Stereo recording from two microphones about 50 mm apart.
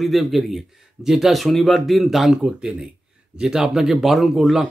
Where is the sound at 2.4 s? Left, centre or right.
Centre.